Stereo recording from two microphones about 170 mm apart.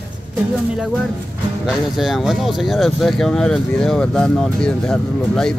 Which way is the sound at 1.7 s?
Centre (ahead or behind).